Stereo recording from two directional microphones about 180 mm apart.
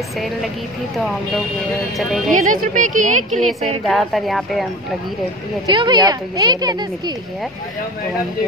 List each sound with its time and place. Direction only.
0.9 s speech: centre (ahead or behind)
2.4 s a woman's voice: 50° right (ahead or behind)
3.8 s speech: centre (ahead or behind)
5.7 s speech: 25° right (ahead or behind)